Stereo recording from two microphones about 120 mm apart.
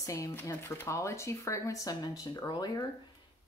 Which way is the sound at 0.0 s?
25° left (ahead or behind).